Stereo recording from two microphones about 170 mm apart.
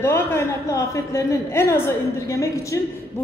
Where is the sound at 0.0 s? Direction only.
15° left (ahead or behind).